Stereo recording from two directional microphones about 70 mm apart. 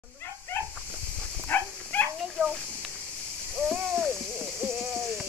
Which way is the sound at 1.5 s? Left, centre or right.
Left.